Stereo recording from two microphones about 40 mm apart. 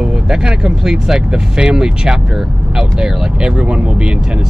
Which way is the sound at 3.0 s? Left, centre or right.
Right.